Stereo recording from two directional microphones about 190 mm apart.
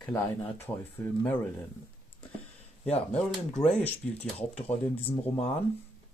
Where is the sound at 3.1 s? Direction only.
5° left (ahead or behind).